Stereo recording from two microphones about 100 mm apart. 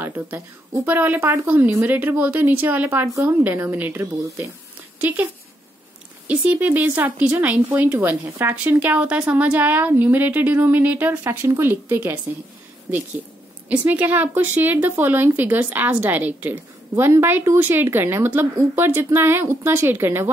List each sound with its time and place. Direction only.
0.0 s a woman's voice: 20° right (ahead or behind)
4.9 s a sound: 20° right (ahead or behind)
6.2 s speech: 15° right (ahead or behind)
13.7 s a woman's voice: 15° right (ahead or behind)